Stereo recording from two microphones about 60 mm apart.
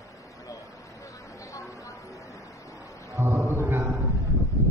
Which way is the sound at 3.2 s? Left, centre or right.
Right.